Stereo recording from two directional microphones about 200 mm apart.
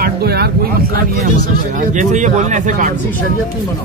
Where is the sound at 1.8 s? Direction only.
40° right (ahead or behind).